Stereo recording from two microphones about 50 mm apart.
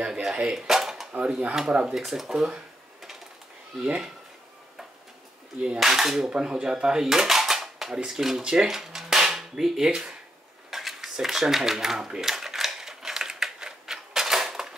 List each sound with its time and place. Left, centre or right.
0.0 s a sound: centre
0.6 s drawer open or close: centre
1.7 s speech: right
2.0 s speech: centre
3.8 s speech: centre
5.8 s speech: centre
8.0 s cap gun: centre
9.8 s speech: centre
10.7 s a sound: centre